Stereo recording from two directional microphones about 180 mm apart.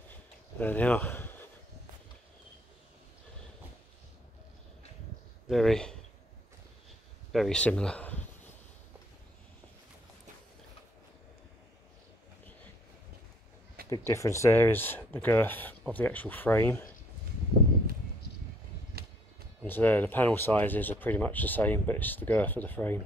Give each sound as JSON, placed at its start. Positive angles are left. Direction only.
{"t": 0.1, "sound": "a sound", "side_deg": 10}
{"t": 5.5, "sound": "speech", "side_deg": 0}
{"t": 7.3, "sound": "speech", "side_deg": 5}
{"t": 13.8, "sound": "speech", "side_deg": 20}
{"t": 18.9, "sound": "music", "side_deg": -60}
{"t": 19.6, "sound": "speech", "side_deg": 10}